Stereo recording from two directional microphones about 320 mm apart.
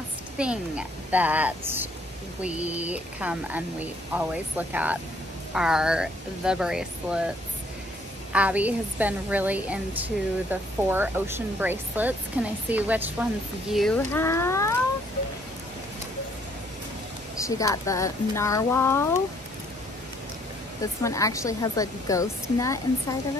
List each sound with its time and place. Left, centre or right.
0.4 s a woman's voice: centre
8.3 s a woman's voice: centre
17.4 s speech: centre
21.0 s speech: centre